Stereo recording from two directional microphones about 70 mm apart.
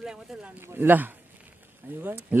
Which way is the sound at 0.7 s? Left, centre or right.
Right.